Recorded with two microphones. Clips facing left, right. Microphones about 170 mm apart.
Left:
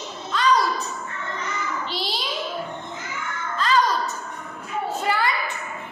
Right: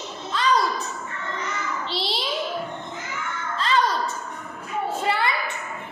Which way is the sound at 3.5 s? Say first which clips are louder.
Left 2 dB; 25° right (ahead or behind).